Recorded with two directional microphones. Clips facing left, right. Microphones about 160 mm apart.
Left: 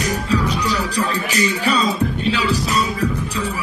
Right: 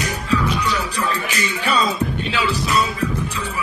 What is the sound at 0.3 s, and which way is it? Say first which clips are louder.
Music: right 1 dB; 35° left (ahead or behind).